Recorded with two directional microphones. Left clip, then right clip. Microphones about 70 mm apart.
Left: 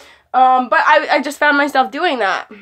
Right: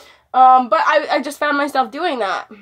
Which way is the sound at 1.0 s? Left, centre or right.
Centre.